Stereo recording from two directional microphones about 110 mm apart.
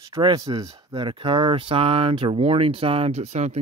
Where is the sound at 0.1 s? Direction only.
40° right (ahead or behind).